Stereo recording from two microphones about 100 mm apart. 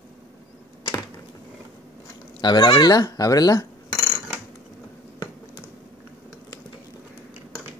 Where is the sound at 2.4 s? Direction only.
45° left (ahead or behind).